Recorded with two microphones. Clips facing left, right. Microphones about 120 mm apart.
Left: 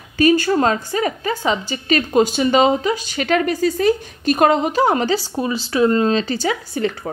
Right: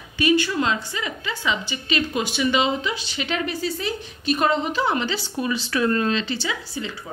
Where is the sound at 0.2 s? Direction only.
40° left (ahead or behind).